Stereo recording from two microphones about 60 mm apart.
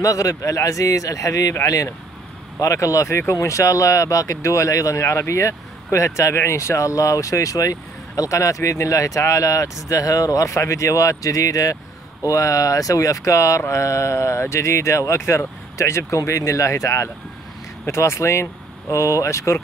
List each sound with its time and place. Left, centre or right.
0.0 s speech: left
2.6 s speech: left
3.2 s speech: left
8.2 s speech: left
12.3 s speech: left